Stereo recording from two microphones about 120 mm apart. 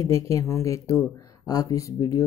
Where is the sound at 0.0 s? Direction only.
25° left (ahead or behind).